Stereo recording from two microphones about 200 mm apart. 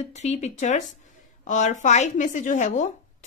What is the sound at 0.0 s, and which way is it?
A woman's voice, 35° left (ahead or behind).